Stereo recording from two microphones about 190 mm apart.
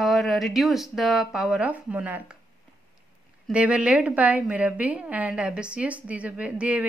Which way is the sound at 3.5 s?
5° right (ahead or behind).